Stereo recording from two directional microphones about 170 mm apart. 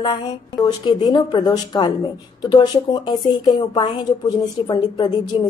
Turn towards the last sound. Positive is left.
turn(degrees=25)  # may be behind; listen again after turning